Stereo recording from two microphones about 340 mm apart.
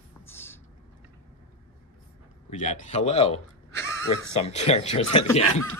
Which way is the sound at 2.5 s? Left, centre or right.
Left.